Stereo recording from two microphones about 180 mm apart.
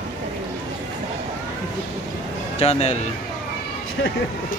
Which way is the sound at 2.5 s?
35° left (ahead or behind).